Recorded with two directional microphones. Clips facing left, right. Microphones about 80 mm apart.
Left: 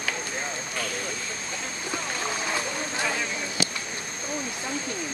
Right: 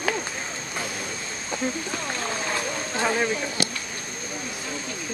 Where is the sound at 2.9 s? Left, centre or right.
Right.